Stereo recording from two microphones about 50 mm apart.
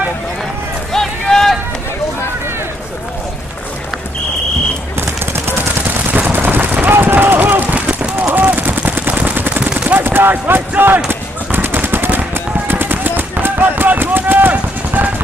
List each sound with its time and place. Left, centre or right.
0.9 s run: centre
6.1 s run: right
10.3 s clip-clop: right
11.1 s machine gun: right
12.6 s a sound: right